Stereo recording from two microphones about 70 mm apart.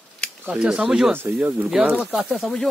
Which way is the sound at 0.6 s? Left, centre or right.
Centre.